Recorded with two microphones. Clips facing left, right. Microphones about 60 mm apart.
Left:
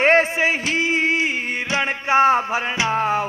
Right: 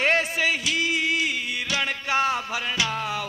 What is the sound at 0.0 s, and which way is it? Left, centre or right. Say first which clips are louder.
Music: left 6 dB; left.